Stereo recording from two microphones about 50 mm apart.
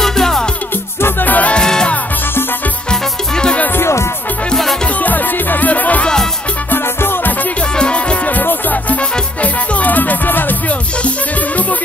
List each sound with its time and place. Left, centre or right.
0.0 s music: centre
1.2 s music: left
1.5 s music: centre
2.9 s music: centre
5.0 s music: left
6.7 s music: left
7.7 s music: centre
8.3 s music: left